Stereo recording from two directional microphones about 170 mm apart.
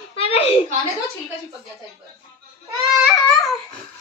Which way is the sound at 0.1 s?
35° left (ahead or behind).